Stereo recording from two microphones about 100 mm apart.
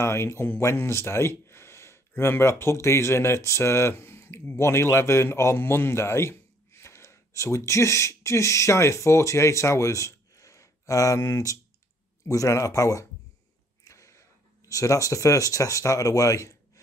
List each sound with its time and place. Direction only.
0.0 s speech: 25° left (ahead or behind)
13.8 s a sound: 30° left (ahead or behind)
14.7 s speech: 35° left (ahead or behind)